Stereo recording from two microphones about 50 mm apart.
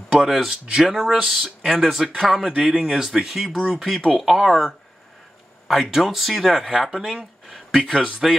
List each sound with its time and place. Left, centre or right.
0.1 s speech: centre
0.7 s speech: centre
1.2 s speech: centre
2.5 s speech: right
2.8 s speech: centre
7.8 s speech: centre